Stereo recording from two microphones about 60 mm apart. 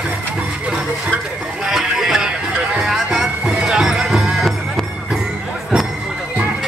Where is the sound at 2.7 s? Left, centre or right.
Centre.